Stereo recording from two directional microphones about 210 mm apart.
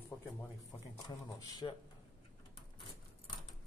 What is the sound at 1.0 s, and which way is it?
Speech, 20° left (ahead or behind).